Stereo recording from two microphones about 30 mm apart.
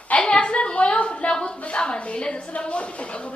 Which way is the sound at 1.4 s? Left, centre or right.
Left.